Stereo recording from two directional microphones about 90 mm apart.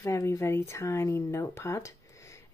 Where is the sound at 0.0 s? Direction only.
35° left (ahead or behind).